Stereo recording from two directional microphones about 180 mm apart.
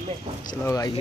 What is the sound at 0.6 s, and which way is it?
Speech, 20° left (ahead or behind).